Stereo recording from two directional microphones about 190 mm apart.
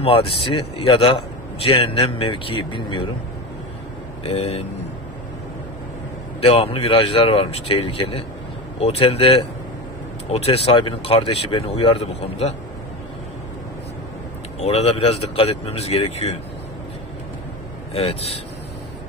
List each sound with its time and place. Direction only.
0.0 s a man's voice: 30° left (ahead or behind)
4.2 s speech: 30° left (ahead or behind)
6.4 s a man's voice: 30° left (ahead or behind)
14.6 s speech: 35° left (ahead or behind)